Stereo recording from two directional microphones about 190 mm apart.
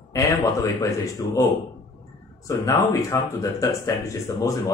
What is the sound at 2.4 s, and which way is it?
A man's voice, 15° left (ahead or behind).